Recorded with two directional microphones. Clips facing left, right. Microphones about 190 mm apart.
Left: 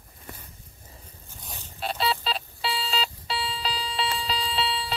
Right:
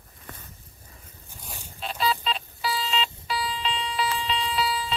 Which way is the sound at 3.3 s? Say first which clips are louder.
Right 2 dB; 30° left (ahead or behind).